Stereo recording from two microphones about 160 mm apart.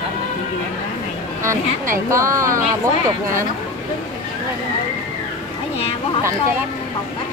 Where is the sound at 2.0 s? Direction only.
20° right (ahead or behind).